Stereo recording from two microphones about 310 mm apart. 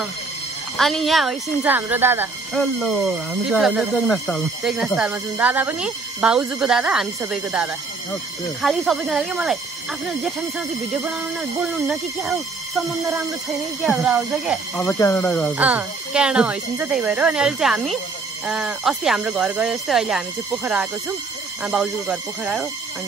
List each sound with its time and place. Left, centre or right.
0.7 s speech: centre
13.8 s speech: centre